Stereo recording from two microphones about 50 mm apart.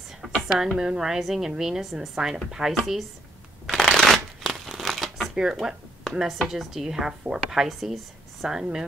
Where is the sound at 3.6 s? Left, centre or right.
Centre.